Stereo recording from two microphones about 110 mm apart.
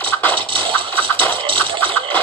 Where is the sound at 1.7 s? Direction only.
55° right (ahead or behind).